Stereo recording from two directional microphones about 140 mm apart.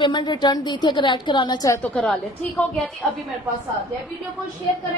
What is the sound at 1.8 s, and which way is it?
Speech, 10° left (ahead or behind).